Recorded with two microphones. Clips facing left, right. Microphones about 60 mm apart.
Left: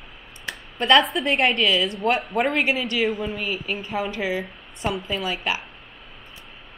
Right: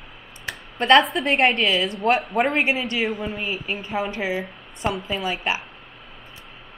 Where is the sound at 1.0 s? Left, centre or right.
Centre.